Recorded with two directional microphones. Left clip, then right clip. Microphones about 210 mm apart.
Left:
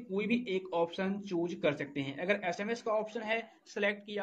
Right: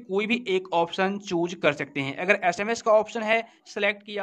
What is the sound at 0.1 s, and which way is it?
Speech, 35° right (ahead or behind).